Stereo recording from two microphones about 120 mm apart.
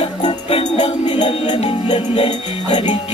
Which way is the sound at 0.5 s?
55° left (ahead or behind).